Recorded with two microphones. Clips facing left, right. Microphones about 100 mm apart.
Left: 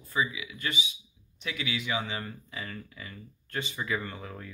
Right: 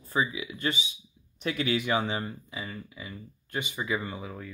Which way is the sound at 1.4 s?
40° right (ahead or behind).